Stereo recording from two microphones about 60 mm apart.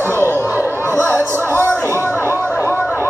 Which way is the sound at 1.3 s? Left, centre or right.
Left.